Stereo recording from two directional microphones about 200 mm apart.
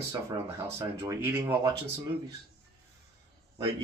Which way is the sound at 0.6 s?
15° right (ahead or behind).